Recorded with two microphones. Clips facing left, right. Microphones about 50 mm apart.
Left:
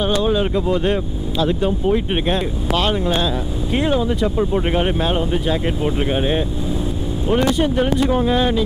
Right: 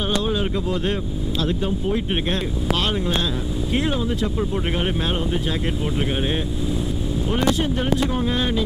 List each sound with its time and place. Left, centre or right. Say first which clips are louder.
0.0 s speech: left 5 dB; centre
8.2 s speech: left 5 dB; centre